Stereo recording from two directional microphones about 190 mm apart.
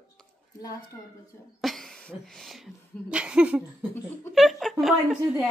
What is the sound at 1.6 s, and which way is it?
Speech, centre (ahead or behind).